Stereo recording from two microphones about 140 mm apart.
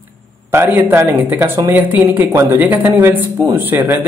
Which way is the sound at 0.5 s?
20° right (ahead or behind).